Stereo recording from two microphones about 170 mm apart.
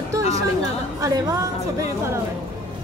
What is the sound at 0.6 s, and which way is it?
Speech, 20° right (ahead or behind).